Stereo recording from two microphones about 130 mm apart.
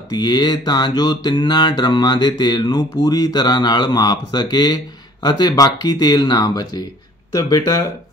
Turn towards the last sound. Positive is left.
turn(degrees=30)  # may be behind; listen again after turning